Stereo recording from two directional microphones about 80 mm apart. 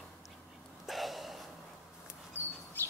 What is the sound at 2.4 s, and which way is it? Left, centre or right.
Bird, right.